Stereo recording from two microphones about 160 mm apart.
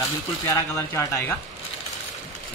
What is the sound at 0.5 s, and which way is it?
Speech, 20° left (ahead or behind).